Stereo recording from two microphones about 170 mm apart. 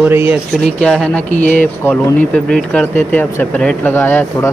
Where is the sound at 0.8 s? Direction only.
5° left (ahead or behind).